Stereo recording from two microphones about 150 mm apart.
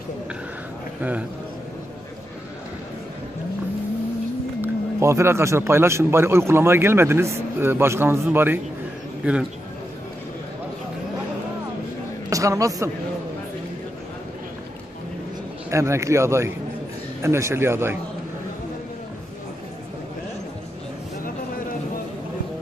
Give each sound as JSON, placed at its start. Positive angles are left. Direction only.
{"t": 4.6, "sound": "a man's voice", "side_deg": -15}
{"t": 12.3, "sound": "speech", "side_deg": -20}
{"t": 15.7, "sound": "speech", "side_deg": -20}